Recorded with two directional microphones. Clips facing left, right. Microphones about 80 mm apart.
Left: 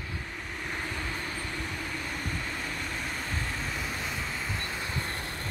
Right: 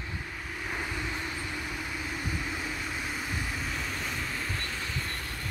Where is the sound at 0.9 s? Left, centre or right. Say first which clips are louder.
Even; centre.